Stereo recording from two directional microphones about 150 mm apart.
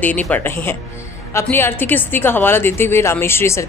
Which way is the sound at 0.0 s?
10° left (ahead or behind).